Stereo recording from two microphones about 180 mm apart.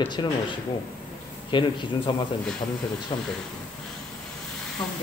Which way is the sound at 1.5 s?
25° left (ahead or behind).